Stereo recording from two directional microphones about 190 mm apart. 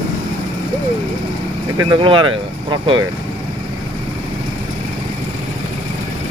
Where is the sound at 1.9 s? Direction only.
25° right (ahead or behind).